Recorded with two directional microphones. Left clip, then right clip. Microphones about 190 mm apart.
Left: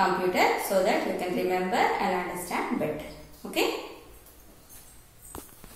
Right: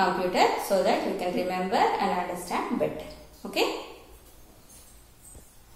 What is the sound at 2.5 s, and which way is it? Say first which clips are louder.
Speech: right 1 dB; 20° right (ahead or behind).